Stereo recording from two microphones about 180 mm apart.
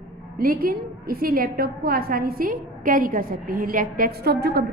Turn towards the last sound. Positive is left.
turn(degrees=-60)  # may be behind; listen again after turning